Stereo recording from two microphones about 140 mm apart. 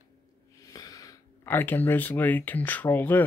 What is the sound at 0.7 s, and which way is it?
Speech, 25° left (ahead or behind).